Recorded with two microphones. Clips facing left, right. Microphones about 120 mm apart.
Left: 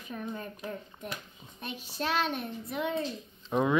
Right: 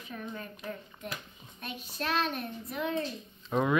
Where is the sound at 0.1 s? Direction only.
20° left (ahead or behind).